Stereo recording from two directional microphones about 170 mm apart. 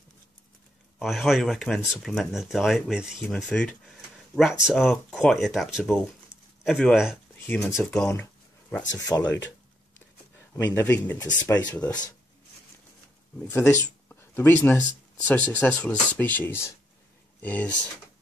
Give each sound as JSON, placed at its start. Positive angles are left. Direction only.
{"t": 0.9, "sound": "speech", "side_deg": 0}
{"t": 7.4, "sound": "speech", "side_deg": 10}
{"t": 8.1, "sound": "a sound", "side_deg": 10}
{"t": 8.9, "sound": "speech", "side_deg": 20}
{"t": 10.5, "sound": "speech", "side_deg": 10}
{"t": 13.4, "sound": "speech", "side_deg": 15}